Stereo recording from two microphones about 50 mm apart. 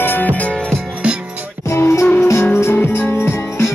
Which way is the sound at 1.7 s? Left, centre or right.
Left.